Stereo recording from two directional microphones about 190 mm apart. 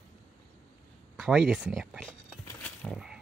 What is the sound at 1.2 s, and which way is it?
Speech, 5° right (ahead or behind).